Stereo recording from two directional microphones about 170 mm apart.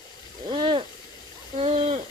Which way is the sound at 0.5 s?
30° right (ahead or behind).